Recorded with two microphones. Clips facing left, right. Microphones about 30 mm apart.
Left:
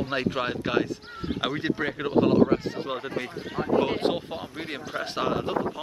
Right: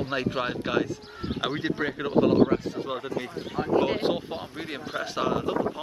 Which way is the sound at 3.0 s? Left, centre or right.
Left.